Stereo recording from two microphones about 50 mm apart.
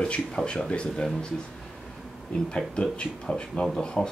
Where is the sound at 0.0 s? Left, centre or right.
Centre.